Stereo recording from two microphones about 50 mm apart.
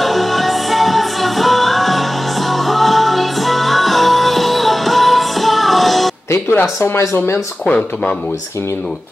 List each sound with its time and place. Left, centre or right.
0.0 s music: centre
6.8 s speech: left